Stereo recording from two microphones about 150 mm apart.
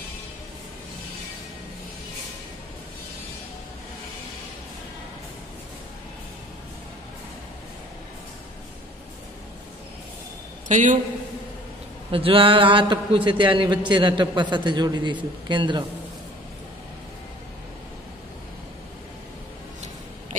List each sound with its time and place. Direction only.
10.7 s a man's voice: 55° right (ahead or behind)
12.1 s a man's voice: 35° right (ahead or behind)